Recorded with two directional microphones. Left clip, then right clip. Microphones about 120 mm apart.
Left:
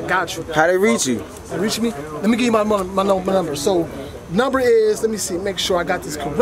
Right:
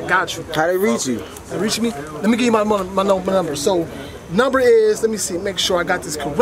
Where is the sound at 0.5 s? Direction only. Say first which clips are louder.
Left 2 dB; 10° left (ahead or behind).